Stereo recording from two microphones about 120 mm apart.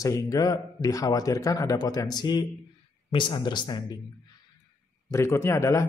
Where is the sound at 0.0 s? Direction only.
30° left (ahead or behind).